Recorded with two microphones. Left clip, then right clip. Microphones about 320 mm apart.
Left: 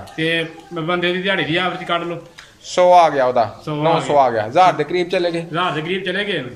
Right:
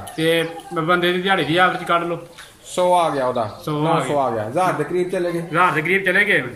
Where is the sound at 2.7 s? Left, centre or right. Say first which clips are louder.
Left 6 dB; left.